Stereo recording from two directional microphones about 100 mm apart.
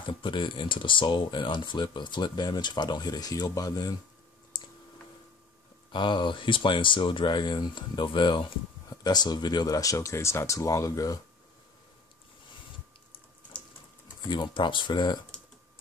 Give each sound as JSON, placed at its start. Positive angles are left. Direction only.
{"t": 0.0, "sound": "speech", "side_deg": 55}
{"t": 5.9, "sound": "speech", "side_deg": 55}
{"t": 14.3, "sound": "speech", "side_deg": 50}